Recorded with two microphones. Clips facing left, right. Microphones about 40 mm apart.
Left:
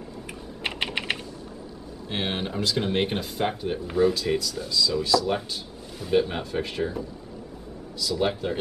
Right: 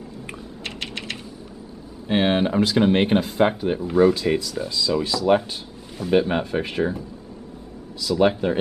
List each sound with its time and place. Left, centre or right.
0.7 s typing: centre
2.0 s speech: centre
8.2 s speech: centre